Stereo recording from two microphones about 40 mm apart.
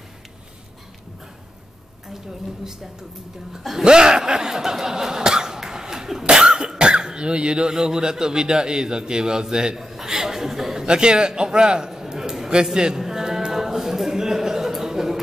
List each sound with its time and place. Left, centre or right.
3.8 s speech: centre
6.3 s cough: centre
7.7 s a man's voice: centre
9.8 s chuckle: centre
10.9 s a man's voice: right
12.7 s a sound: centre